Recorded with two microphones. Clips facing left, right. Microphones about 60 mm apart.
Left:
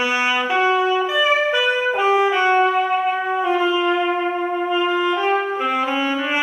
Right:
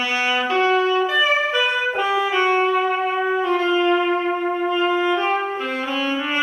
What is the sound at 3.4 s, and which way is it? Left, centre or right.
Wind instrument, centre.